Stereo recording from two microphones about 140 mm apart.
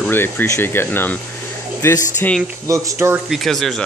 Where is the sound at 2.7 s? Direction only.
25° right (ahead or behind).